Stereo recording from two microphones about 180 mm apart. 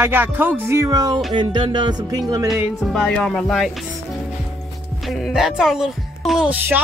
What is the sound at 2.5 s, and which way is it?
Speech, centre (ahead or behind).